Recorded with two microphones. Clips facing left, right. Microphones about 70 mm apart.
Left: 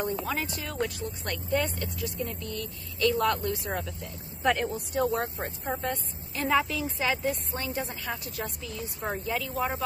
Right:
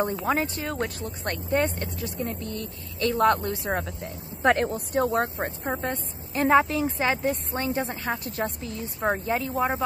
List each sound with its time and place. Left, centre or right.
0.0 s speech: right
5.7 s speech: right